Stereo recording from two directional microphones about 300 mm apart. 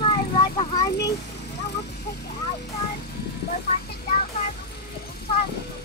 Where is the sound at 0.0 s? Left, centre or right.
Centre.